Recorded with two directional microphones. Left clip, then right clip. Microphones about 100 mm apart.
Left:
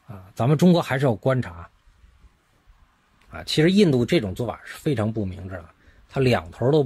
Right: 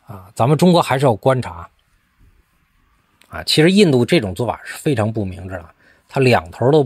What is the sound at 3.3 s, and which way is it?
Speech, 55° right (ahead or behind).